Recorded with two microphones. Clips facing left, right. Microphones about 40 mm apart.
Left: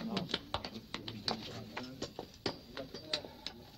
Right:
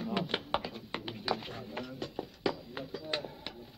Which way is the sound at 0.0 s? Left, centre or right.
Right.